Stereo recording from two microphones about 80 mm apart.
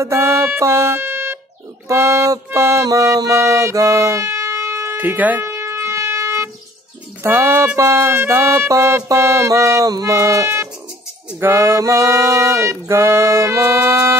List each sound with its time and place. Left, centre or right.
0.0 s music: right
0.6 s speech: right
1.9 s music: right
4.9 s speech: right
5.5 s shofar: right
7.2 s music: right